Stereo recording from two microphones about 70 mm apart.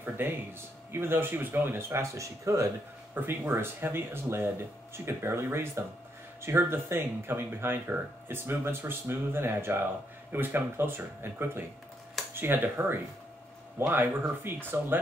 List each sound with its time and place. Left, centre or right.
0.2 s speech: right
3.2 s speech: right